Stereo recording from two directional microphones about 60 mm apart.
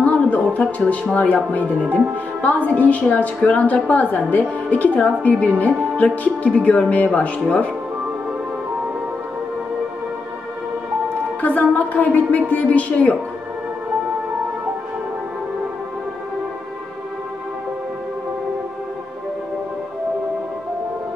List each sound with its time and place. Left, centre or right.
0.0 s music: left
1.1 s a woman's voice: left
11.4 s a woman's voice: left